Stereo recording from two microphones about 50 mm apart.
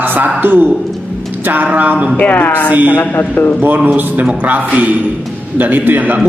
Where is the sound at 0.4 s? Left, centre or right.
Right.